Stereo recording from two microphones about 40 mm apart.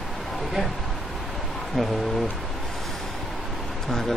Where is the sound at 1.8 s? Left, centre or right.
Centre.